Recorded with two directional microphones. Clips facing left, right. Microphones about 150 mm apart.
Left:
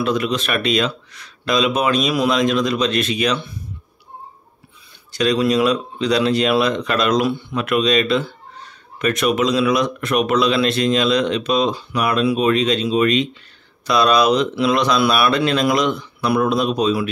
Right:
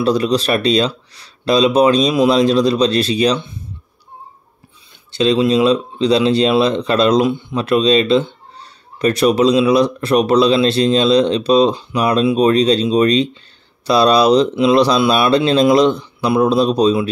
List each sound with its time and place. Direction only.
0.0 s speech: 35° right (ahead or behind)
5.1 s speech: 25° right (ahead or behind)
7.2 s speech: 15° right (ahead or behind)
7.5 s speech: 30° right (ahead or behind)